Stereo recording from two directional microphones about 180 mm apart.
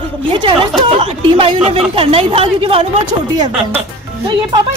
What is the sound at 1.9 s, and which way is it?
Speech, 30° right (ahead or behind).